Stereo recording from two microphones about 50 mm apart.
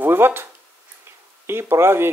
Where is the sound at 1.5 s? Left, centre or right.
Right.